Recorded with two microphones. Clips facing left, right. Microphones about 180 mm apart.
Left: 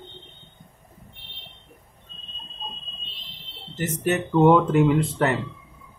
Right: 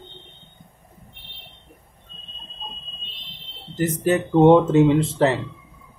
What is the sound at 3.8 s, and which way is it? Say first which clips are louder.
Speech: right 4 dB; 30° right (ahead or behind).